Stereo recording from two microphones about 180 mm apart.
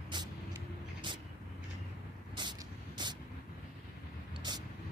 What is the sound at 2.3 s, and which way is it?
Vehicle, 25° right (ahead or behind).